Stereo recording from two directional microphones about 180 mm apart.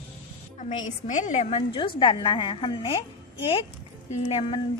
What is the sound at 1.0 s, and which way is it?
A woman's voice, 40° left (ahead or behind).